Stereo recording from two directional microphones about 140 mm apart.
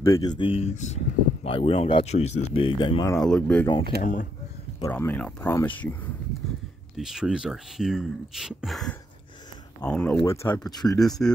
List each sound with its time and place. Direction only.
0.0 s speech: 25° left (ahead or behind)
3.2 s speech: 5° left (ahead or behind)
4.0 s speech: 65° left (ahead or behind)
4.9 s speech: 10° left (ahead or behind)
7.0 s speech: 5° right (ahead or behind); by 11.0 s 30° left (ahead or behind)
11.0 s speech: 5° left (ahead or behind)